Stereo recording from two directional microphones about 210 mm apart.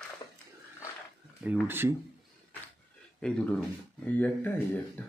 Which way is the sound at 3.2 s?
5° left (ahead or behind).